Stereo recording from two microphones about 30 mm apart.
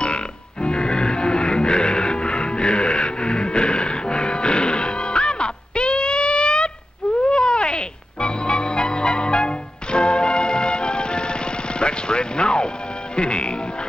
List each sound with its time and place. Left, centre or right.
0.0 s music: left